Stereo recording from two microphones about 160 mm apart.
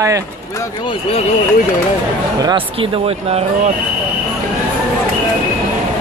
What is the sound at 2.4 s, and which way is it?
Speech, 30° right (ahead or behind).